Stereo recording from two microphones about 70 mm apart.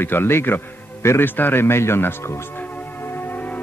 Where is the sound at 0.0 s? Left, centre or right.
Left.